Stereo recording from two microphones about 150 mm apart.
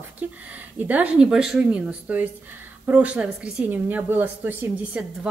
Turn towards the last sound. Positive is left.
turn(degrees=-10)  # may be behind; listen again after turning